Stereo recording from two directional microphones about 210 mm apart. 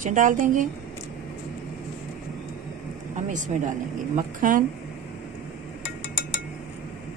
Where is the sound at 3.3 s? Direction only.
35° right (ahead or behind).